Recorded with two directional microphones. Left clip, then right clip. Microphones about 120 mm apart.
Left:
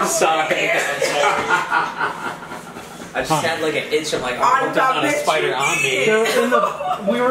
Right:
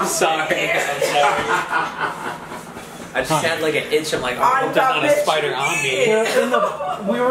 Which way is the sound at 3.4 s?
25° right (ahead or behind).